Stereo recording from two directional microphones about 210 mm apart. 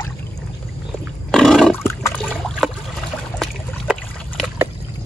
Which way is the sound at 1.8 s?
10° left (ahead or behind).